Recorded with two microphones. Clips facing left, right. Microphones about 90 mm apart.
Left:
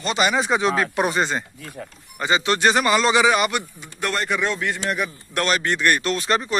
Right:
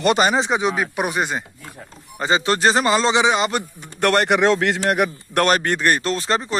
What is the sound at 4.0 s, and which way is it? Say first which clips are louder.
Speech: right 7 dB; 65° right (ahead or behind).